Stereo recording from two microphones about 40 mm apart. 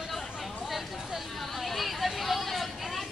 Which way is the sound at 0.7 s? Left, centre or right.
Centre.